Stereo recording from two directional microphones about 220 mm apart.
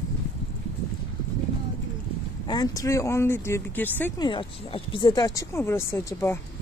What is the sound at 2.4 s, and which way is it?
Speech, 15° left (ahead or behind).